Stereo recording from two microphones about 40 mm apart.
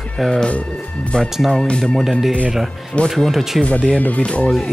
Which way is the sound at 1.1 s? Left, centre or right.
Left.